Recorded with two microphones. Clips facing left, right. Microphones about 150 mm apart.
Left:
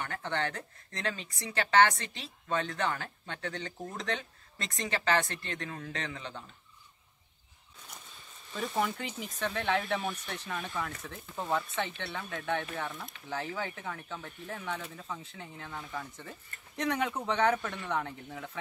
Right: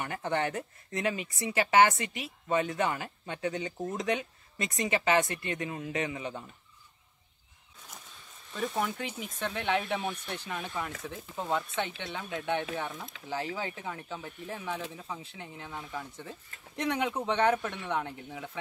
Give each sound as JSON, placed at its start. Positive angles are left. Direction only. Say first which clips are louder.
{"t": 0.0, "sound": "speech", "louder": "right 3 dB", "side_deg": -20}
{"t": 8.5, "sound": "speech", "louder": "even", "side_deg": 0}
{"t": 13.4, "sound": "speech", "louder": "right 1 dB", "side_deg": -20}
{"t": 14.0, "sound": "speech", "louder": "right 2 dB", "side_deg": -5}